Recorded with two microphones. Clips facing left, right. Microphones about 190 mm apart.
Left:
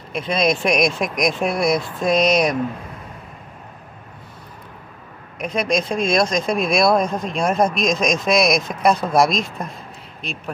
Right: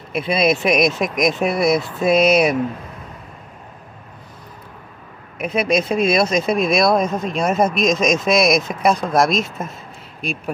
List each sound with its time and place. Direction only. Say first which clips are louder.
0.1 s speech: right 2 dB; 5° right (ahead or behind)
5.4 s speech: right 2 dB; 5° right (ahead or behind)